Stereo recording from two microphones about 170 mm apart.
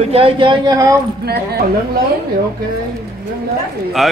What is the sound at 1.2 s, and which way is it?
Speech, 70° right (ahead or behind).